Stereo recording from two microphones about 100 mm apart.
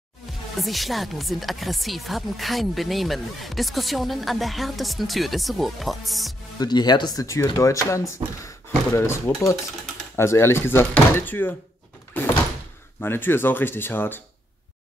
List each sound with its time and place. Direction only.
0.6 s speech: centre (ahead or behind)
6.6 s speech: 45° left (ahead or behind); by 11.5 s 20° left (ahead or behind)
13.0 s speech: 20° left (ahead or behind)